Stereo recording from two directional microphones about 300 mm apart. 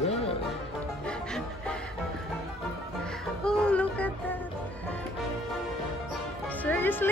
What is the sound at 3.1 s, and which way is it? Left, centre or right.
Music, centre.